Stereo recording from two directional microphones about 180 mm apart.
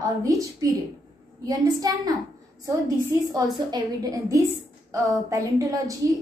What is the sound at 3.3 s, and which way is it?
A woman's voice, 20° right (ahead or behind).